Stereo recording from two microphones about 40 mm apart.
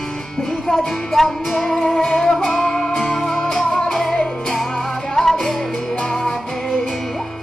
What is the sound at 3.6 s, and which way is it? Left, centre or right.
Music, centre.